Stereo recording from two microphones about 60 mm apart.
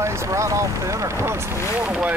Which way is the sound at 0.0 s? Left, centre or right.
Right.